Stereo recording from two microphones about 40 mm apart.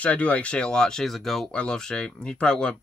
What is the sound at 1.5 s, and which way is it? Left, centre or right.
Speech, left.